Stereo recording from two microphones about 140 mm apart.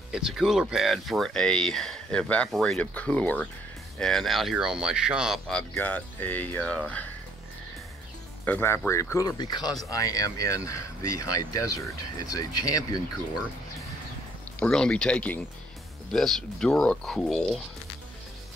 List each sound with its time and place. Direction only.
0.1 s speech: 5° right (ahead or behind)
8.5 s speech: 15° left (ahead or behind)
14.6 s speech: 5° left (ahead or behind)